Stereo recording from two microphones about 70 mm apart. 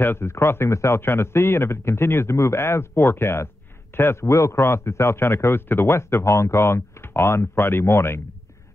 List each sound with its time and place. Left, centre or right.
0.0 s a man's voice: left